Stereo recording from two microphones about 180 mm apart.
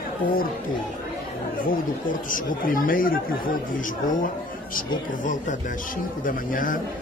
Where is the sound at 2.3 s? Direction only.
50° left (ahead or behind).